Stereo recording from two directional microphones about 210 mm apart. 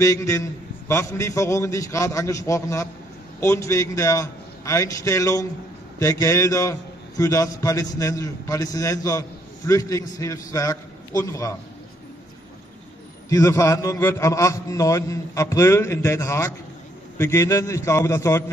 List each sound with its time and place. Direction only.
0.0 s a man's voice: 15° left (ahead or behind)
13.3 s a man's voice: 15° left (ahead or behind)